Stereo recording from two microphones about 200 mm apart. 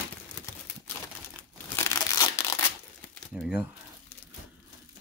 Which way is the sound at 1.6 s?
15° left (ahead or behind).